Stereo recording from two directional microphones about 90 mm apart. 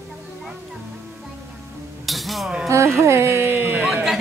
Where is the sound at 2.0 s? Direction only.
Centre (ahead or behind).